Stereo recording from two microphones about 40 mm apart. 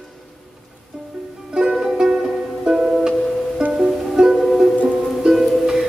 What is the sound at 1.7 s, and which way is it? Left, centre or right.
Music, centre.